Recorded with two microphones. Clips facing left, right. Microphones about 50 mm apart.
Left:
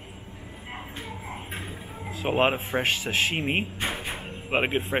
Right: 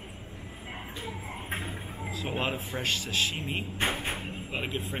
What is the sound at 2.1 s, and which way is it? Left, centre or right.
Speech, left.